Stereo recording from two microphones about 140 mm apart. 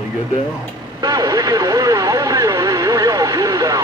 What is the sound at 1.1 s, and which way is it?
Vehicle, 25° right (ahead or behind).